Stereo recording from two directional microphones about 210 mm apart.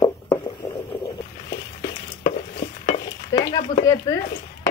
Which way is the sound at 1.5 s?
55° left (ahead or behind).